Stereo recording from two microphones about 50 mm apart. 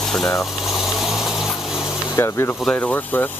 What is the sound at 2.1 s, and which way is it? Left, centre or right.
Speech, left.